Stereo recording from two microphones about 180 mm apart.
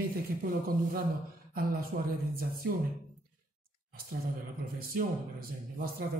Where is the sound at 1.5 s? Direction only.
50° right (ahead or behind).